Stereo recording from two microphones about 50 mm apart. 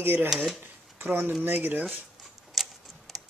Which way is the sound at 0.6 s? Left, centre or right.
Right.